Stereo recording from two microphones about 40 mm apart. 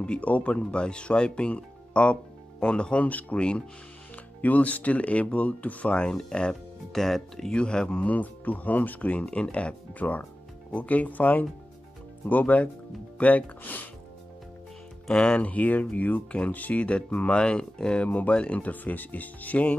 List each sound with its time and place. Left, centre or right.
0.2 s speech: left
3.1 s speech: left
3.3 s speech: left
4.4 s speech: left
5.9 s speech: left
6.9 s speech: centre
7.5 s speech: left
8.1 s speech: left
15.0 s speech: centre
15.3 s speech: left
16.8 s speech: left
18.0 s speech: left
18.7 s speech: left